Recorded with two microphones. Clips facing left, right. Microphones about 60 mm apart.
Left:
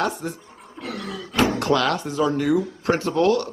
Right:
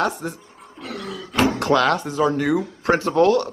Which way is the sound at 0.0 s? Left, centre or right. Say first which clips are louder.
Right 2 dB; right.